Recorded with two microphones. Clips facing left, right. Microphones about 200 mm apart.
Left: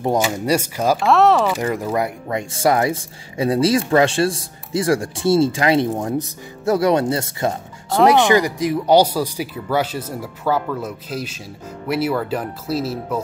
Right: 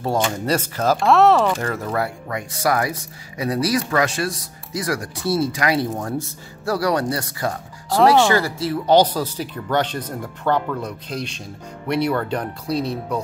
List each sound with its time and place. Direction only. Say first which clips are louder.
0.2 s speech: left 2 dB; 10° left (ahead or behind)
1.0 s speech: right 1 dB; centre (ahead or behind)
1.6 s speech: left 3 dB; 15° left (ahead or behind)